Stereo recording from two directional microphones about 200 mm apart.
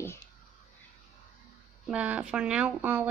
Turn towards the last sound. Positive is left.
turn(degrees=-10)  # may be behind; listen again after turning